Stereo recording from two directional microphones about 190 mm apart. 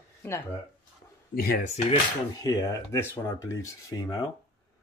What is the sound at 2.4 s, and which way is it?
Speech, 15° left (ahead or behind).